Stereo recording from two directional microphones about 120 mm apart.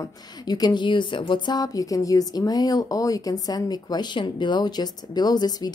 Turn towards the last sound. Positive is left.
turn(degrees=35)  # may be behind; listen again after turning